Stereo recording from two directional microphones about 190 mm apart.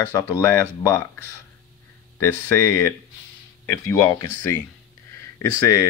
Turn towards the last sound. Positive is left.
turn(degrees=15)  # may be behind; listen again after turning